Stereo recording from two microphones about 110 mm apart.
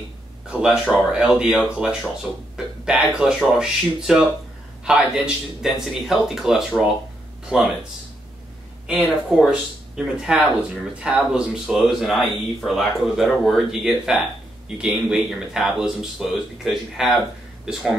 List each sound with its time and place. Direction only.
0.5 s speech: 10° right (ahead or behind)
8.8 s speech: 5° right (ahead or behind)